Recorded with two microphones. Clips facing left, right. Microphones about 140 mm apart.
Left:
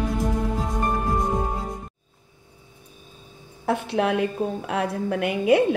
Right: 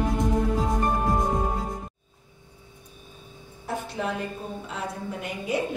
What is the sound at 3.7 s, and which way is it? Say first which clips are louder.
A woman's voice: left 7 dB; 70° left (ahead or behind).